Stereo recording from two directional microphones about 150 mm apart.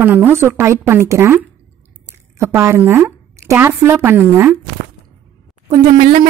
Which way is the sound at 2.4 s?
15° right (ahead or behind).